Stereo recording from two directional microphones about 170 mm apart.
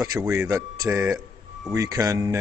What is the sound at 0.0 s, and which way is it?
Speech, 15° right (ahead or behind).